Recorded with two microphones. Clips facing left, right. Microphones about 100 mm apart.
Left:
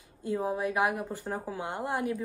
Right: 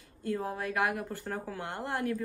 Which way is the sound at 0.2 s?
15° left (ahead or behind).